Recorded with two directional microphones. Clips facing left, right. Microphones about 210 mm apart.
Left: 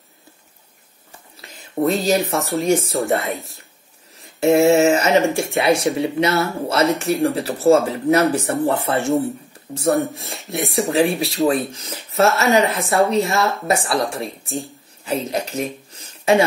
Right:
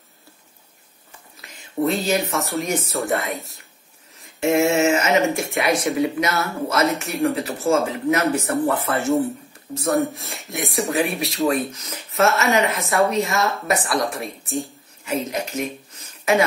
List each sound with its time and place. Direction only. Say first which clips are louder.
1.3 s whispering: left 3 dB; 30° left (ahead or behind)
1.8 s speech: left 3 dB; 40° left (ahead or behind)
2.3 s speech: left 3 dB; centre (ahead or behind)
2.6 s speech: left 6 dB; 30° left (ahead or behind)
3.0 s speech: left 3 dB; centre (ahead or behind)
4.4 s speech: left 4 dB; 35° left (ahead or behind)
9.8 s speech: left 2 dB; centre (ahead or behind)
11.0 s speech: left 6 dB; 30° left (ahead or behind)
12.1 s music: left 2 dB; centre (ahead or behind)
12.5 s speech: left 3 dB; 30° left (ahead or behind)
14.2 s speech: even; centre (ahead or behind)
15.0 s a woman's voice: left 2 dB; 35° left (ahead or behind)